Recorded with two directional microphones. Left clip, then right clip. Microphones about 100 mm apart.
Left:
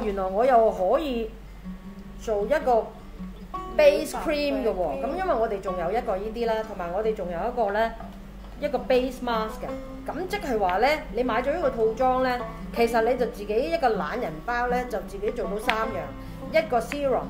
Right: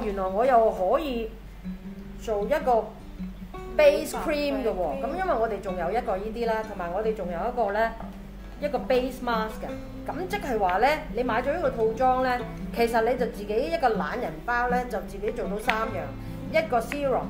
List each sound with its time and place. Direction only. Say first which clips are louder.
0.0 s a woman's voice: left 1 dB; 30° left (ahead or behind)
2.2 s a woman's voice: left 1 dB; 25° left (ahead or behind)
4.6 s a woman's voice: left 1 dB; 5° left (ahead or behind)
5.0 s a woman's voice: left 1 dB; 30° left (ahead or behind)